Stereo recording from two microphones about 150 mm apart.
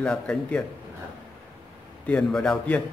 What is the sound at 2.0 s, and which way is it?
Speech, 5° left (ahead or behind).